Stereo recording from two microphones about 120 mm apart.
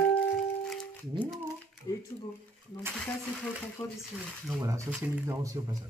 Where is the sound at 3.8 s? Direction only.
Centre (ahead or behind).